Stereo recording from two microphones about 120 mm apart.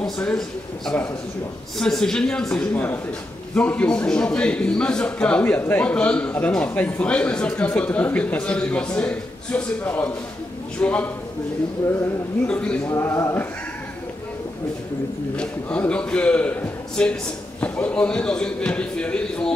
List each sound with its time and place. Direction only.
0.0 s a man's voice: 5° left (ahead or behind)
12.4 s a man's voice: 10° left (ahead or behind)
12.8 s speech: 20° left (ahead or behind)
15.3 s a man's voice: 10° left (ahead or behind)